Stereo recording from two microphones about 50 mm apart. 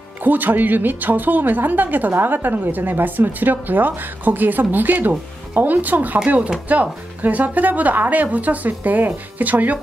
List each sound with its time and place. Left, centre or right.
0.2 s a woman's voice: right